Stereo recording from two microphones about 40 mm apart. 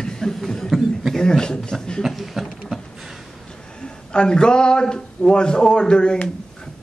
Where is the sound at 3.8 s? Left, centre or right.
Left.